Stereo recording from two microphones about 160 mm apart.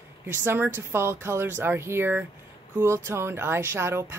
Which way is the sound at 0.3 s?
15° right (ahead or behind).